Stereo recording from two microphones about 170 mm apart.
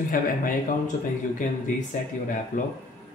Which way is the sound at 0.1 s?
55° left (ahead or behind).